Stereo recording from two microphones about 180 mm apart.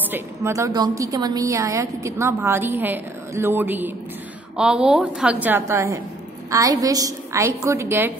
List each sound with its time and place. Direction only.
0.1 s a woman's voice: 15° right (ahead or behind)